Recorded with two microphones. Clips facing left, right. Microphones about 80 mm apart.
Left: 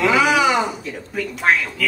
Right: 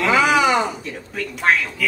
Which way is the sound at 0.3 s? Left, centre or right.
Right.